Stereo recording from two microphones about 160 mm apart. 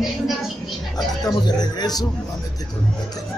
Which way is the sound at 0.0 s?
Centre (ahead or behind).